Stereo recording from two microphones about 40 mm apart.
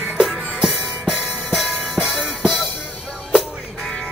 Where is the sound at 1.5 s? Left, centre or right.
Centre.